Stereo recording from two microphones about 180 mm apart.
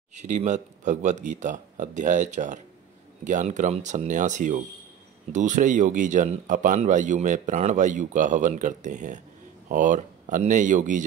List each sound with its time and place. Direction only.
0.1 s speech: 40° right (ahead or behind)